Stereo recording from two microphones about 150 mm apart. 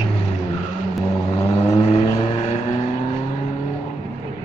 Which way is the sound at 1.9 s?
40° left (ahead or behind).